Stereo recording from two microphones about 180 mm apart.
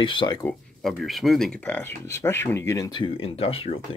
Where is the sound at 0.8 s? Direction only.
Centre (ahead or behind).